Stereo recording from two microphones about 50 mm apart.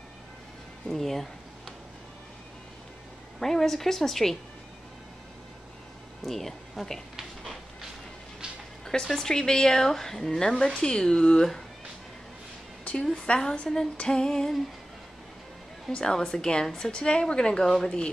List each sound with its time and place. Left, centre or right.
0.8 s speech: centre
3.3 s a woman's voice: centre
6.2 s speech: centre
8.8 s a woman's voice: centre
13.0 s a woman's voice: centre
15.9 s a woman's voice: centre